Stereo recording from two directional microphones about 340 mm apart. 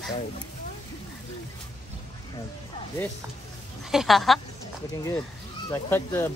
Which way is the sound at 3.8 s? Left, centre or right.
Centre.